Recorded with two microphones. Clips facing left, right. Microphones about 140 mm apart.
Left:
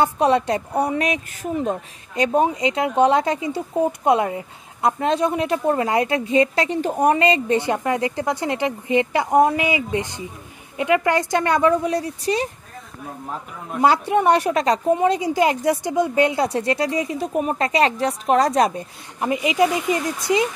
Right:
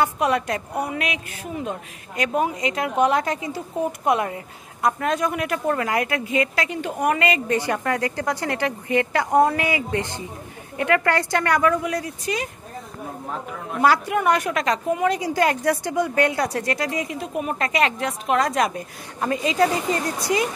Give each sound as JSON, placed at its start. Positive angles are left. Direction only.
{"t": 0.0, "sound": "a woman's voice", "side_deg": 30}
{"t": 13.7, "sound": "a woman's voice", "side_deg": 25}
{"t": 19.2, "sound": "speech", "side_deg": 15}